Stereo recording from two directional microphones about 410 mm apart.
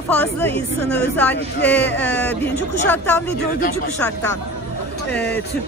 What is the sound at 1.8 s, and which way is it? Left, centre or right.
Speech, left.